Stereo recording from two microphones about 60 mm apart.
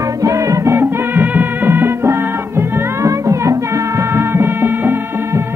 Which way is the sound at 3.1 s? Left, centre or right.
Right.